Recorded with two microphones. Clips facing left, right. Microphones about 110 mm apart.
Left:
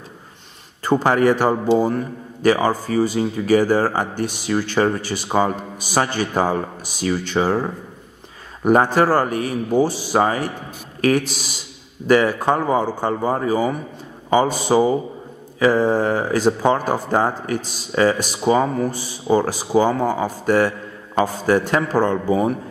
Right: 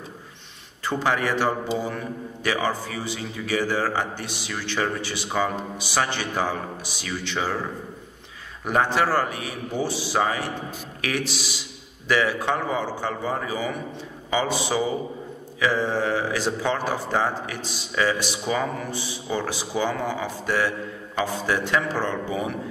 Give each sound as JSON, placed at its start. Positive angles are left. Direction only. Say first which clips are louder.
{"t": 0.8, "sound": "speech", "louder": "left 8 dB", "side_deg": 45}
{"t": 8.6, "sound": "speech", "louder": "left 7 dB", "side_deg": 45}